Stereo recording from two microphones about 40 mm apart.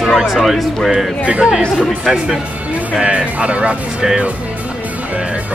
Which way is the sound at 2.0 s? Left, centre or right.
Centre.